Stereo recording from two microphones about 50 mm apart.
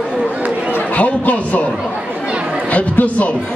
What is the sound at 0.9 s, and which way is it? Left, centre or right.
Speech, left.